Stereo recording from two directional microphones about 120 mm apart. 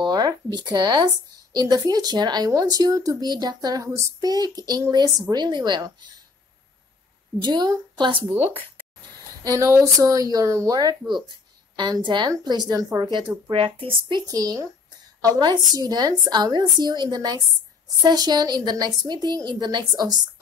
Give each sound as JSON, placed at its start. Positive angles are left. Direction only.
{"t": 0.0, "sound": "a sound", "side_deg": -35}
{"t": 1.5, "sound": "speech", "side_deg": -35}
{"t": 7.4, "sound": "speech", "side_deg": -35}
{"t": 9.4, "sound": "speech", "side_deg": -25}
{"t": 13.5, "sound": "speech", "side_deg": -50}
{"t": 14.2, "sound": "speech", "side_deg": -30}